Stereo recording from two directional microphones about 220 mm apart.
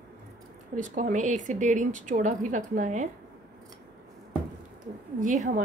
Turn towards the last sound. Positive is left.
turn(degrees=-35)  # may be behind; listen again after turning